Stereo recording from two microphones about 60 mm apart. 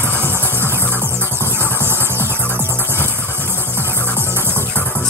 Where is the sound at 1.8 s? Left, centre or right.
Right.